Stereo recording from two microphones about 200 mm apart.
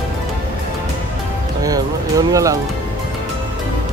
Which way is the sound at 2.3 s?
15° right (ahead or behind).